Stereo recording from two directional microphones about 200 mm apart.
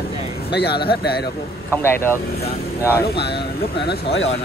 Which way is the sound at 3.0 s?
55° left (ahead or behind).